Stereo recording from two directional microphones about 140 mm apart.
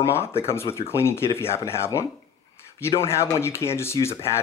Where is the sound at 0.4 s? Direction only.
20° left (ahead or behind).